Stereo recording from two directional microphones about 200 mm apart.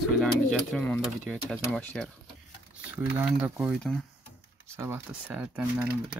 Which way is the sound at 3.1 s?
5° right (ahead or behind).